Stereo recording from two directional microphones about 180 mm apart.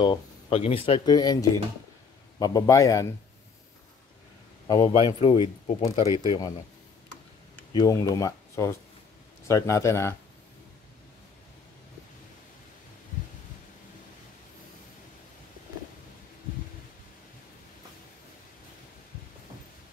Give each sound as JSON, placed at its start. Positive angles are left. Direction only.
{"t": 0.0, "sound": "speech", "side_deg": 30}
{"t": 4.6, "sound": "speech", "side_deg": 25}
{"t": 7.7, "sound": "speech", "side_deg": 20}